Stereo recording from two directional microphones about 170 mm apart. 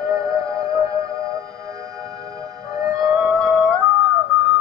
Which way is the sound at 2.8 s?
20° right (ahead or behind).